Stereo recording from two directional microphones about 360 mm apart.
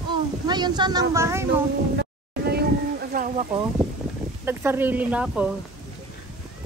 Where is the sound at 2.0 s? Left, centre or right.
Right.